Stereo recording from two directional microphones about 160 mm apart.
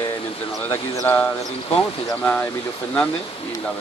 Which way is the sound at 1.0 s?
10° left (ahead or behind).